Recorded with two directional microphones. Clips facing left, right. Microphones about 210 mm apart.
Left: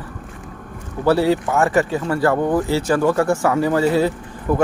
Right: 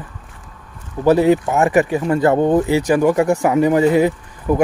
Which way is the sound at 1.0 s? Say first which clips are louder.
Right 3 dB; 15° right (ahead or behind).